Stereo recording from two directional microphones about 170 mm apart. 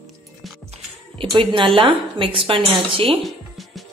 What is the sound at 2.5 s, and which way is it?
Speech, 35° right (ahead or behind).